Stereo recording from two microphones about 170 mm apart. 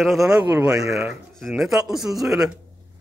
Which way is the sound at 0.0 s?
Centre (ahead or behind).